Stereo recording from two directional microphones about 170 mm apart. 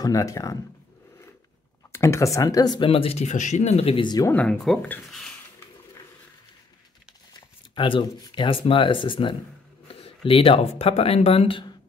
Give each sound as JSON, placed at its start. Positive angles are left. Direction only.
{"t": 0.0, "sound": "speech", "side_deg": 20}
{"t": 1.9, "sound": "speech", "side_deg": 15}
{"t": 4.3, "sound": "speech", "side_deg": 5}
{"t": 7.3, "sound": "speech", "side_deg": 30}